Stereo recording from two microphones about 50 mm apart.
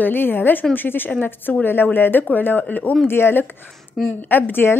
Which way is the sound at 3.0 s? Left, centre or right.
Left.